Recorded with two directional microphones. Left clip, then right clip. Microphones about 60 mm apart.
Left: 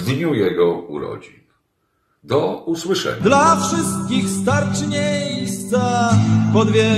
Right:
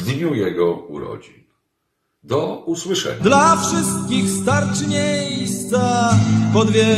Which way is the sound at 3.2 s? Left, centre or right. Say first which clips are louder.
Right 1 dB; right.